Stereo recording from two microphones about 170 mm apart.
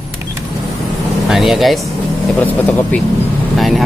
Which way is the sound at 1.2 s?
Centre (ahead or behind).